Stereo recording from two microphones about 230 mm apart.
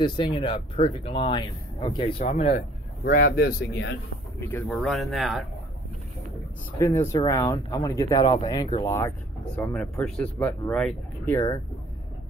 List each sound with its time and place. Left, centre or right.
0.0 s speech: centre
2.1 s speech: left
4.5 s speech: centre
6.8 s speech: centre